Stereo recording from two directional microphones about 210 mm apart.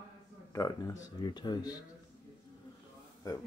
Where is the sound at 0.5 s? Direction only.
15° left (ahead or behind).